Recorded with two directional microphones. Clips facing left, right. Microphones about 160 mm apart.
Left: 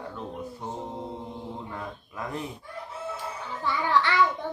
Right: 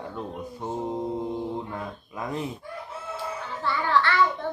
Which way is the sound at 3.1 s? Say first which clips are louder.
Right 2 dB; 15° left (ahead or behind).